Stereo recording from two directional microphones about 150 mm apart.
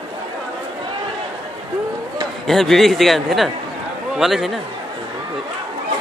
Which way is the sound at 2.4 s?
Centre (ahead or behind).